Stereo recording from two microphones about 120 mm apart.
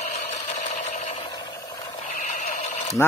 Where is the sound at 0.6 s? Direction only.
90° left.